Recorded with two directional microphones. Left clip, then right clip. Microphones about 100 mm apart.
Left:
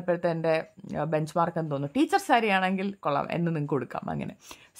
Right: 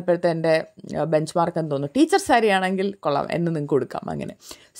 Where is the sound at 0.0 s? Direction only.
45° right (ahead or behind).